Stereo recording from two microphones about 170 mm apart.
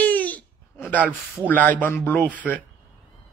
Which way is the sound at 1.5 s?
10° left (ahead or behind).